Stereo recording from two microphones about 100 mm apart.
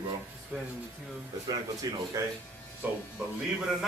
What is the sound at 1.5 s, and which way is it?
Speech, 40° right (ahead or behind).